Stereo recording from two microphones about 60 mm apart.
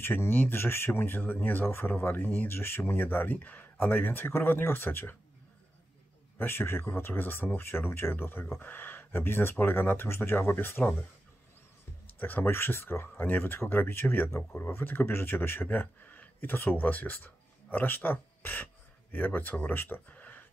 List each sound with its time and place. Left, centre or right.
0.0 s speech: left
6.3 s speech: left
12.2 s speech: left